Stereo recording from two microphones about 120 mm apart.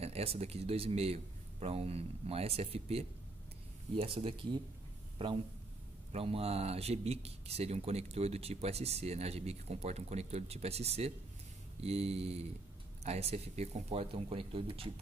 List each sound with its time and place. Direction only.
0.0 s speech: 60° right (ahead or behind)